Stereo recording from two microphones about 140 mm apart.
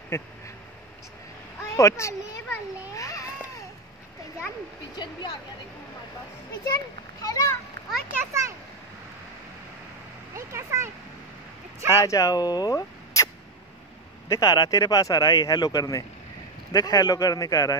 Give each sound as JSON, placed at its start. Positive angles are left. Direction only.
{"t": 0.1, "sound": "speech", "side_deg": 20}
{"t": 1.6, "sound": "a child's voice", "side_deg": 20}
{"t": 2.9, "sound": "a sound", "side_deg": 25}
{"t": 4.9, "sound": "speech", "side_deg": 30}
{"t": 6.6, "sound": "a child's voice", "side_deg": 25}
{"t": 8.3, "sound": "speech", "side_deg": -20}
{"t": 10.3, "sound": "speech", "side_deg": -20}
{"t": 11.9, "sound": "speech", "side_deg": 20}
{"t": 14.3, "sound": "speech", "side_deg": 25}